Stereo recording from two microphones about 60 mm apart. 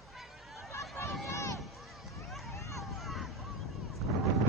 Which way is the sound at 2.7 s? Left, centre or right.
Centre.